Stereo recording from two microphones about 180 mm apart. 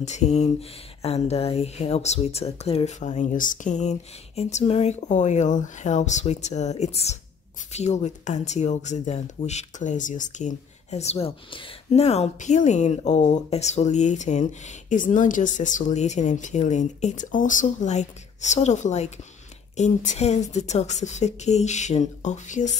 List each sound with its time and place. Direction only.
0.0 s speech: 40° left (ahead or behind)